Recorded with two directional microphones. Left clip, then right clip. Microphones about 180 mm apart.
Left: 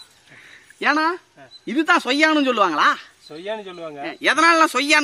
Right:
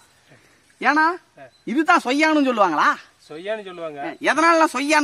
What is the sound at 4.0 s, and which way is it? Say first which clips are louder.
A man's voice: left 1 dB; 55° right (ahead or behind).